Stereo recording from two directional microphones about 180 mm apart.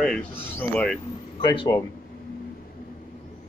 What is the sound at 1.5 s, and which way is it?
Speech, 20° left (ahead or behind).